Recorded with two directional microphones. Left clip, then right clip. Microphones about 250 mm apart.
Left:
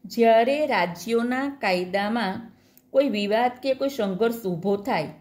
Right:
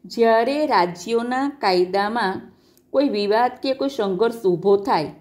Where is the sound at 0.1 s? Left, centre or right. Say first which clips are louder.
Right 1 dB; centre.